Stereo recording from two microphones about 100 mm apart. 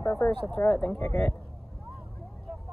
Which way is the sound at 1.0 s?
25° left (ahead or behind).